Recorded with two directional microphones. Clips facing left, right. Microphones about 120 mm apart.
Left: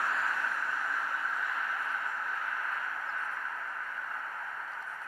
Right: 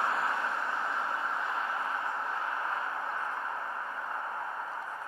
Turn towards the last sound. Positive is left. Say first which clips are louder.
# right 4 dB
turn(degrees=-30)  # may be behind; listen again after turning